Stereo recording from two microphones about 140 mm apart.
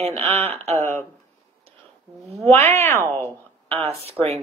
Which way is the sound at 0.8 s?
15° left (ahead or behind).